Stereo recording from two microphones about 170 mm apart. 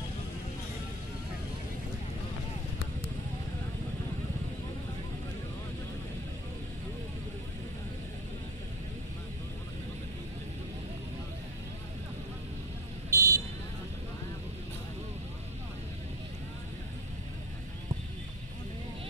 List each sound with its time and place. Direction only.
13.1 s vehicle: 15° right (ahead or behind)